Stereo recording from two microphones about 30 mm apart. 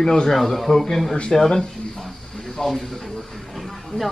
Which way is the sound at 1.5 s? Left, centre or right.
Left.